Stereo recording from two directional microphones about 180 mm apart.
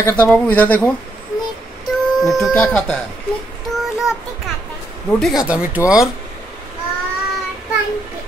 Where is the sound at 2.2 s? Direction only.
Centre (ahead or behind).